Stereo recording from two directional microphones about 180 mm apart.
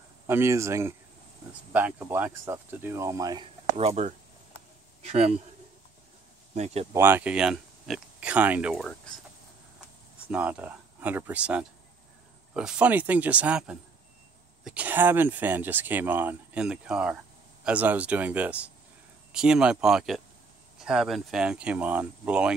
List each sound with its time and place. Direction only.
0.3 s speech: 15° right (ahead or behind)
3.7 s a man's voice: 35° right (ahead or behind)
6.5 s speech: 35° right (ahead or behind)
6.9 s speech: 10° right (ahead or behind)
10.3 s speech: 10° right (ahead or behind)